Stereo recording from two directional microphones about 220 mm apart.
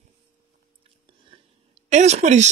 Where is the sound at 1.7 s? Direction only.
30° right (ahead or behind).